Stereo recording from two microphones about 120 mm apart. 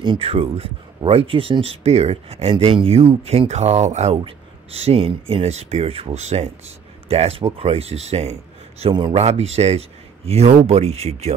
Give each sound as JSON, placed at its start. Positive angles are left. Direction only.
{"t": 0.0, "sound": "speech", "side_deg": -45}
{"t": 4.2, "sound": "speech", "side_deg": -60}